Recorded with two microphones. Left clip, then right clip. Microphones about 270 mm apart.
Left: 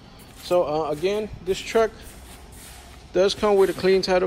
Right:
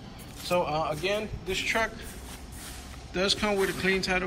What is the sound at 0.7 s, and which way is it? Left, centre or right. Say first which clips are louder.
Speech: left 5 dB; centre.